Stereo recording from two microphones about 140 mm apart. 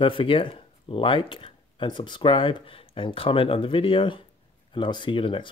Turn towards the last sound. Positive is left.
turn(degrees=35)  # may be behind; listen again after turning